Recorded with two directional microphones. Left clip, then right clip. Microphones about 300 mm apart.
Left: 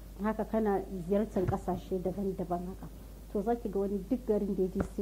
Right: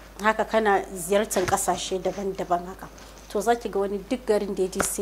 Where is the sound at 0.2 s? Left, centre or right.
Centre.